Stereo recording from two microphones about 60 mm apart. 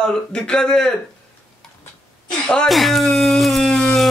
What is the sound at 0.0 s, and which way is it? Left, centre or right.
Speech, centre.